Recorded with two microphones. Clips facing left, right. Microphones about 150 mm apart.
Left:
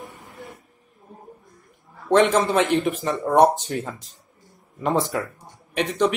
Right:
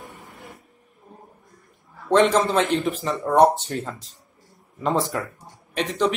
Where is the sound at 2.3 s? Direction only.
Centre (ahead or behind).